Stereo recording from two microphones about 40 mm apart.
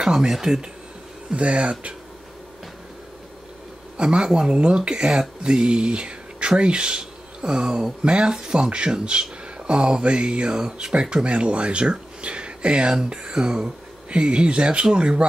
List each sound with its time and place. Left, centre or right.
0.0 s speech: centre
1.3 s speech: right
3.9 s speech: right